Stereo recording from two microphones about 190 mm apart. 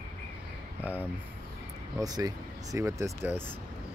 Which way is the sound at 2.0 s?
20° right (ahead or behind).